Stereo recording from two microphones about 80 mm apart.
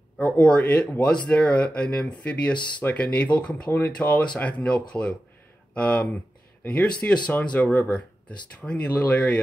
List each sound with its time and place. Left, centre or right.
0.2 s speech: centre